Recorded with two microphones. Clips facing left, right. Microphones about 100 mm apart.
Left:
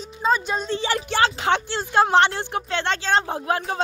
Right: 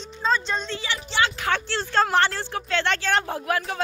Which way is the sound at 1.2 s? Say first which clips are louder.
Left 3 dB; 25° left (ahead or behind).